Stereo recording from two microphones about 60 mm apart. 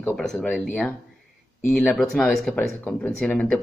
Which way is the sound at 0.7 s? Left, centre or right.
Left.